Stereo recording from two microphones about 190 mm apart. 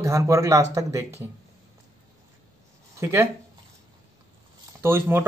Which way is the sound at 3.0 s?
15° right (ahead or behind).